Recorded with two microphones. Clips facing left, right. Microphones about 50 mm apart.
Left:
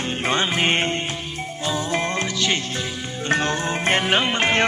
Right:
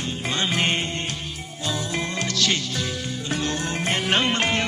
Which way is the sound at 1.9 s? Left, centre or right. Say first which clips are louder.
Left 3 dB; left.